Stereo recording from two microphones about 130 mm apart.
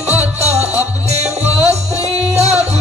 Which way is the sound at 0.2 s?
55° right (ahead or behind).